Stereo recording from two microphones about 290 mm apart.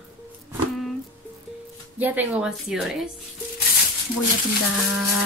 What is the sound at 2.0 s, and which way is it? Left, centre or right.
Speech, centre.